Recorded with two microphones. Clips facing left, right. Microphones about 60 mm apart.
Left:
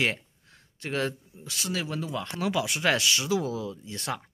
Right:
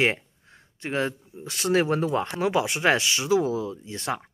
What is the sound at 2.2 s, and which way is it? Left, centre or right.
Speech, right.